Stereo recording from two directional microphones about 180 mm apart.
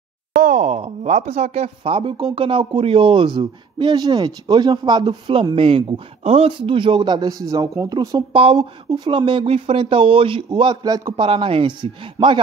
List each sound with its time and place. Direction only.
0.4 s speech: 45° right (ahead or behind); by 12.4 s 30° right (ahead or behind)